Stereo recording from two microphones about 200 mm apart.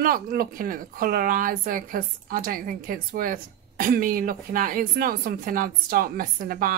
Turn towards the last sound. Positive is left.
turn(degrees=-45)  # may be behind; listen again after turning